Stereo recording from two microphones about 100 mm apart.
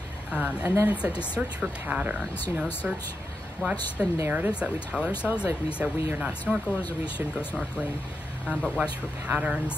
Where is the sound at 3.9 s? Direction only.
25° right (ahead or behind).